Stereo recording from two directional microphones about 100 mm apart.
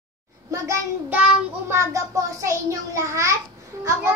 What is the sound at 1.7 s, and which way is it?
A child's voice, 30° right (ahead or behind).